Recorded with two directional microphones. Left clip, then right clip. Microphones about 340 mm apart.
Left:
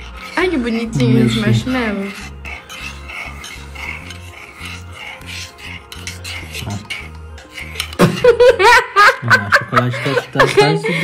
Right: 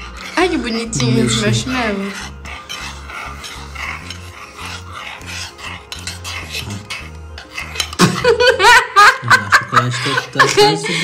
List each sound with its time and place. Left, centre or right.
0.3 s a woman's voice: centre
8.0 s laughter: centre
9.9 s speech: centre